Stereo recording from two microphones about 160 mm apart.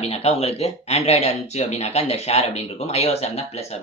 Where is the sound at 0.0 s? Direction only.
40° left (ahead or behind).